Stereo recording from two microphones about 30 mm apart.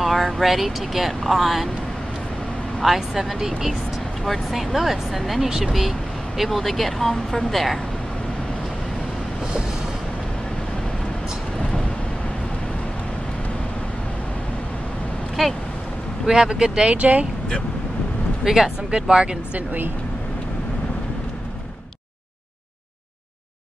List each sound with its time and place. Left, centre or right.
0.0 s speech: centre
2.8 s speech: centre
4.2 s speech: centre
4.6 s speech: centre
6.6 s speech: centre
15.4 s speech: centre
16.3 s speech: right
16.8 s speech: right
18.4 s speech: centre
18.9 s speech: right